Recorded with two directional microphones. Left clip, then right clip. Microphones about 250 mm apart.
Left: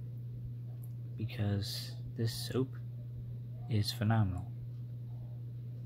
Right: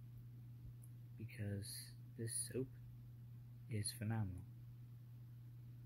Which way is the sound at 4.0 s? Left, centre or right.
Centre.